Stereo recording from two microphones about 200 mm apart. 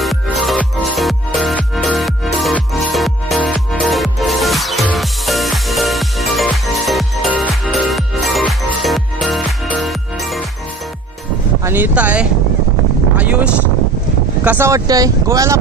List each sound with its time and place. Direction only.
0.0 s music: centre (ahead or behind)
11.6 s speech: 10° right (ahead or behind)
13.2 s a sound: 5° right (ahead or behind)
14.4 s speech: 10° right (ahead or behind)